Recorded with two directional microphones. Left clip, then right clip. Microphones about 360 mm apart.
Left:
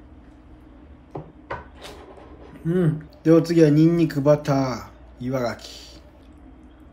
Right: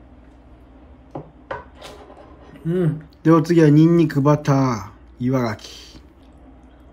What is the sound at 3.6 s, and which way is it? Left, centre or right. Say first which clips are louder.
Speech: right 2 dB; right.